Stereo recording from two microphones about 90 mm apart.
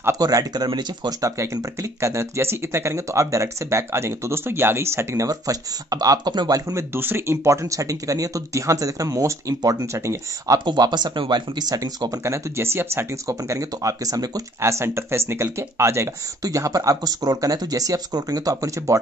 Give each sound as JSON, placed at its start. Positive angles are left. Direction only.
{"t": 0.2, "sound": "speech", "side_deg": -45}
{"t": 1.2, "sound": "speech", "side_deg": -35}
{"t": 6.7, "sound": "speech", "side_deg": -25}
{"t": 10.6, "sound": "speech", "side_deg": -60}
{"t": 12.5, "sound": "speech", "side_deg": -30}
{"t": 14.6, "sound": "speech", "side_deg": -30}